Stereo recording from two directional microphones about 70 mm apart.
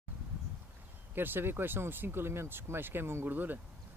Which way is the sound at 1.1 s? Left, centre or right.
Right.